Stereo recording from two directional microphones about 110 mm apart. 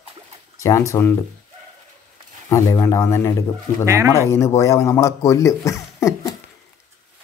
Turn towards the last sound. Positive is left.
turn(degrees=30)  # may be behind; listen again after turning